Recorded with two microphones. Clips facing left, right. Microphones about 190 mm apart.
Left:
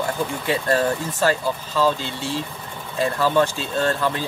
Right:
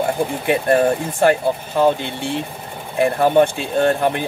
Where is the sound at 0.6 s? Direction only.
20° right (ahead or behind).